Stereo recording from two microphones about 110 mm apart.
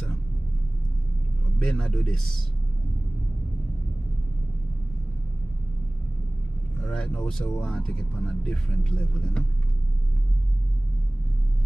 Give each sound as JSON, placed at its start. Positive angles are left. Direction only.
{"t": 1.6, "sound": "speech", "side_deg": 5}
{"t": 6.8, "sound": "speech", "side_deg": 5}